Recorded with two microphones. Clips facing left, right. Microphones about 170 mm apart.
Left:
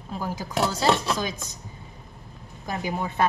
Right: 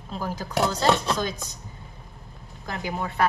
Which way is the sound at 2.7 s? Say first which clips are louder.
Left 1 dB; 15° left (ahead or behind).